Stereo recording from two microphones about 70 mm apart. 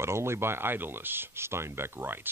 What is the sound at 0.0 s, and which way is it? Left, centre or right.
Speech, right.